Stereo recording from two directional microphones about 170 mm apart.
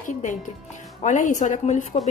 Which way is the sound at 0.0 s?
45° left (ahead or behind).